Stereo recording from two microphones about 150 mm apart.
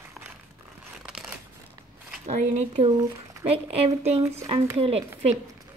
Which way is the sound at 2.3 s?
50° right (ahead or behind).